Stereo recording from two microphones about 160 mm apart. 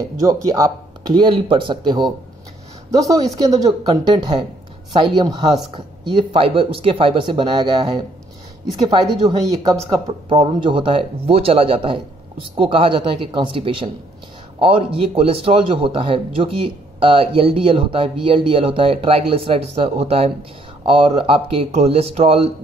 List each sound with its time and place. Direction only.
0.0 s speech: 20° right (ahead or behind)
3.9 s speech: 35° right (ahead or behind)
8.9 s speech: 30° right (ahead or behind)